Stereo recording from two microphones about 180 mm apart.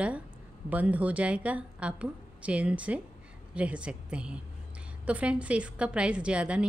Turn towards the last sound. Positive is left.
turn(degrees=-5)  # may be behind; listen again after turning